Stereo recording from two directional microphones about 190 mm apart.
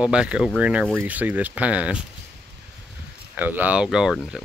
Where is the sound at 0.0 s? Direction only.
5° right (ahead or behind).